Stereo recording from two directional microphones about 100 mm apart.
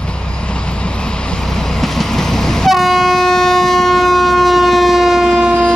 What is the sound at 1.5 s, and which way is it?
Train, 5° left (ahead or behind).